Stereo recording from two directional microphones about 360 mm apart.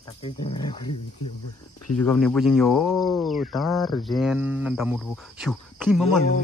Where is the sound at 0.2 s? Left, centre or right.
Centre.